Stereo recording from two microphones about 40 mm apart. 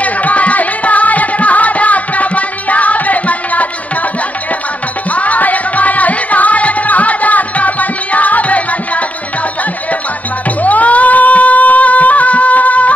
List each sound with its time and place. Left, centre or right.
0.0 s music: left
5.1 s music: left
10.6 s a sound: left